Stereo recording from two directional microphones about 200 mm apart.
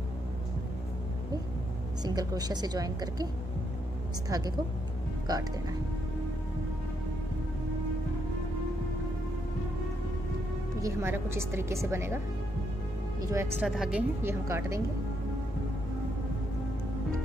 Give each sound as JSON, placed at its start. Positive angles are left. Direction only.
{"t": 2.0, "sound": "a woman's voice", "side_deg": -20}
{"t": 4.3, "sound": "a woman's voice", "side_deg": -20}
{"t": 10.8, "sound": "speech", "side_deg": -15}
{"t": 13.3, "sound": "speech", "side_deg": -15}